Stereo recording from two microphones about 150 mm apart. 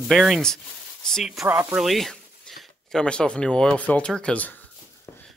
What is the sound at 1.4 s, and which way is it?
Speech, 15° right (ahead or behind).